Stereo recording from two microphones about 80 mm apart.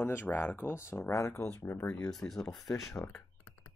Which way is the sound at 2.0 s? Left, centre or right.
Centre.